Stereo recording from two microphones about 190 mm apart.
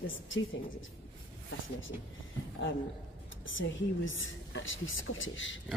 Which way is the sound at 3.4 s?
80° left.